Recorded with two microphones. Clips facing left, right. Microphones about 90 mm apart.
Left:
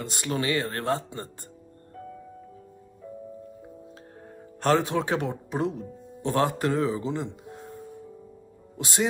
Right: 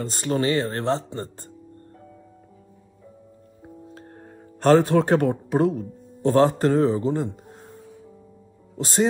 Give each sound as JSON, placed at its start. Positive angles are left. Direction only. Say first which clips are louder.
{"t": 0.0, "sound": "speech", "louder": "right 5 dB", "side_deg": -35}
{"t": 4.6, "sound": "speech", "louder": "right 7 dB", "side_deg": -50}
{"t": 6.3, "sound": "speech", "louder": "right 6 dB", "side_deg": -35}
{"t": 6.7, "sound": "speech", "louder": "right 6 dB", "side_deg": -45}
{"t": 8.7, "sound": "speech", "louder": "right 6 dB", "side_deg": -35}